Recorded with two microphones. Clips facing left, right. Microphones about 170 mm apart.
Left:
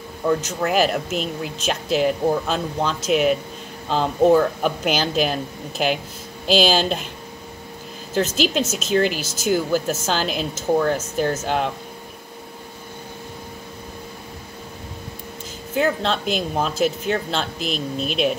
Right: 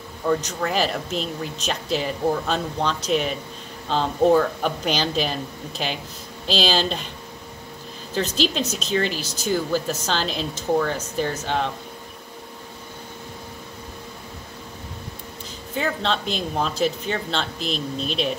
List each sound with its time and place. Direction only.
0.5 s speech: 5° left (ahead or behind)
6.4 s speech: 5° left (ahead or behind)
8.1 s speech: 5° left (ahead or behind)
15.7 s speech: 5° left (ahead or behind)